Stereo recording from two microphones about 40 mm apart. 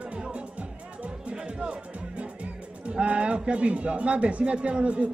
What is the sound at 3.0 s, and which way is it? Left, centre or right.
A man's voice, right.